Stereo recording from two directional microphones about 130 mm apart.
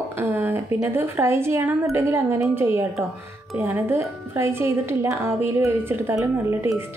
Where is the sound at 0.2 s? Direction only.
15° right (ahead or behind).